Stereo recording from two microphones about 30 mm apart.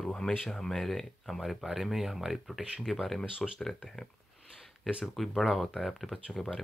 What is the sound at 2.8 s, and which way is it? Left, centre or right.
Speech, centre.